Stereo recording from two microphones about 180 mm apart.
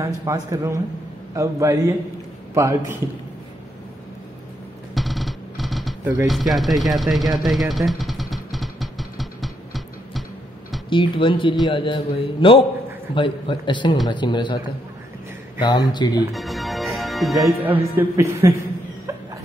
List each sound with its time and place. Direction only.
0.0 s a man's voice: 15° right (ahead or behind)
4.9 s drum roll: centre (ahead or behind)
6.2 s speech: centre (ahead or behind)
7.3 s a sound: centre (ahead or behind)
10.9 s a man's voice: 25° left (ahead or behind)
15.6 s a man's voice: 25° left (ahead or behind)
16.3 s music: centre (ahead or behind)
17.6 s a man's voice: 15° right (ahead or behind)